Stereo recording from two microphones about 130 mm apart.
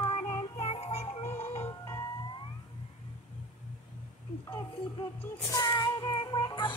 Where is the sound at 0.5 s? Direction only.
50° left (ahead or behind).